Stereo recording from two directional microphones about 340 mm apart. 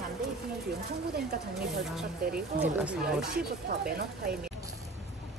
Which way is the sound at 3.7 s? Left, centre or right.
Right.